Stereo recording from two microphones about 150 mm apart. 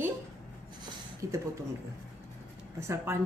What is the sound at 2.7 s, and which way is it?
Speech, 15° right (ahead or behind).